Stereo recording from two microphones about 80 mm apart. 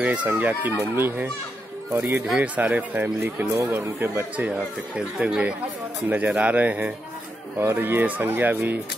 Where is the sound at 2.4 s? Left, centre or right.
Centre.